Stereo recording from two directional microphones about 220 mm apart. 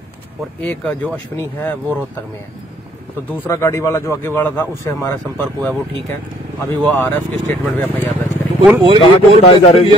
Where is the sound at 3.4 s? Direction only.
10° left (ahead or behind).